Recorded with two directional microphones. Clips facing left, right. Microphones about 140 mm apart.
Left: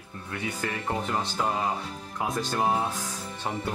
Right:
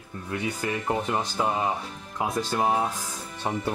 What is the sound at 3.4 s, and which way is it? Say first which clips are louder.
Speech: right 3 dB; 20° right (ahead or behind).